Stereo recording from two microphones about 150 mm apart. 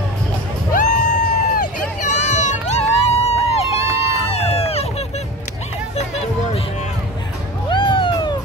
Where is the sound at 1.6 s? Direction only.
50° left (ahead or behind).